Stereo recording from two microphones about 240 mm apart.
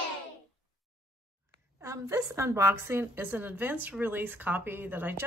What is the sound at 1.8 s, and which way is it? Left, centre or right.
Speech, centre.